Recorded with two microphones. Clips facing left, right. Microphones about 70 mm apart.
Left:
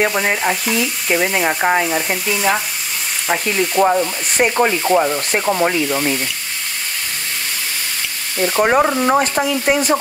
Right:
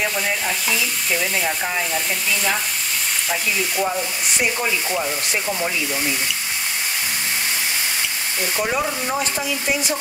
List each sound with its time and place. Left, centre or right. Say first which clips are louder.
0.0 s frying: left 6 dB; left
1.1 s sanding: left 7 dB; left
3.3 s sanding: left 7 dB; left
8.4 s sanding: left 9 dB; left